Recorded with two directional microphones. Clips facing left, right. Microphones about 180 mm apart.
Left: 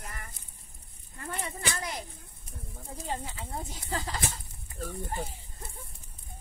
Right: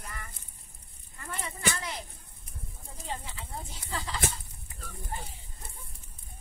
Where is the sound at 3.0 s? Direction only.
45° left (ahead or behind).